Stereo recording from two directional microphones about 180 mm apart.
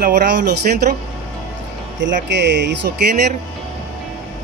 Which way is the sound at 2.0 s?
75° right (ahead or behind).